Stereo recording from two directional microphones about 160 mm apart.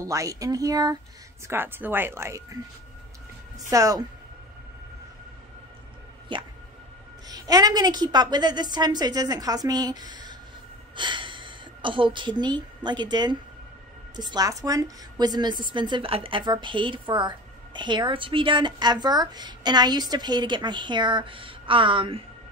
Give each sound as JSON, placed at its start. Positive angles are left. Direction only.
{"t": 0.0, "sound": "a woman's voice", "side_deg": -20}
{"t": 1.5, "sound": "a woman's voice", "side_deg": -15}
{"t": 6.3, "sound": "music", "side_deg": -30}
{"t": 7.2, "sound": "a woman's voice", "side_deg": -25}